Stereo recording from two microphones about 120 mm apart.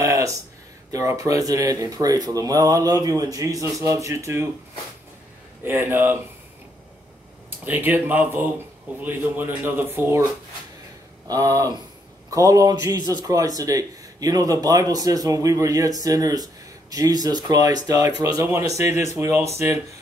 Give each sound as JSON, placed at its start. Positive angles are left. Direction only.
{"t": 0.0, "sound": "a sound", "side_deg": -25}
{"t": 0.9, "sound": "a man's voice", "side_deg": -25}
{"t": 5.7, "sound": "speech", "side_deg": -15}
{"t": 7.6, "sound": "a man's voice", "side_deg": -15}
{"t": 11.2, "sound": "a man's voice", "side_deg": -30}